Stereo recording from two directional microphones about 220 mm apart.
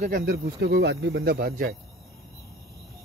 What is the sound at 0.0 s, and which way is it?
Speech, 45° right (ahead or behind).